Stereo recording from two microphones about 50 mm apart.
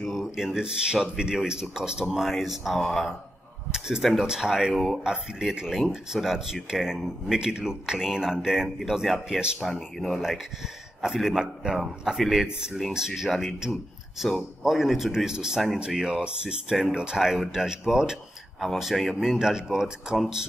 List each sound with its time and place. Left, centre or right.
0.2 s speech: centre
2.8 s speech: centre
3.7 s speech: centre
4.7 s speech: centre
5.0 s speech: centre
11.0 s speech: centre
13.3 s speech: centre